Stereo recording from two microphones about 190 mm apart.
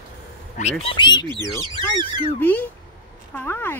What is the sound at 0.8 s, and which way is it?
Speech, 25° left (ahead or behind).